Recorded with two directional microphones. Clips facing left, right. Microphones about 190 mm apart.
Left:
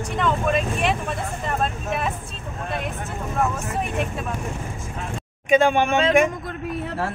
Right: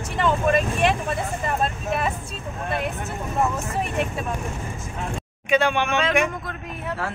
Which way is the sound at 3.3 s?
Centre (ahead or behind).